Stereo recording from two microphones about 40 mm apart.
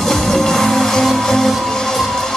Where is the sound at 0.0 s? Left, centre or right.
Centre.